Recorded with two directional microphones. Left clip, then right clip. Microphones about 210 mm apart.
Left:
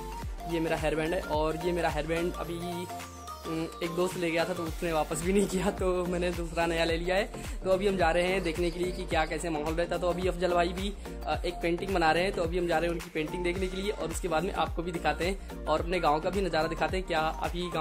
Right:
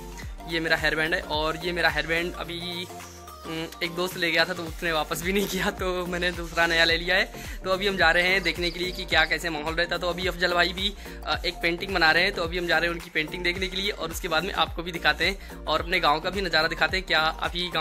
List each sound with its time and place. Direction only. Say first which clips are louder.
0.5 s speech: right 5 dB; 5° left (ahead or behind)